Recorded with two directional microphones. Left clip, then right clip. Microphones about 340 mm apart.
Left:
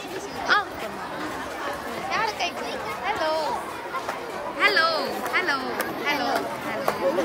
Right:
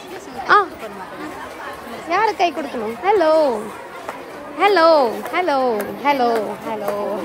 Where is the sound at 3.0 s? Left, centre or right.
Centre.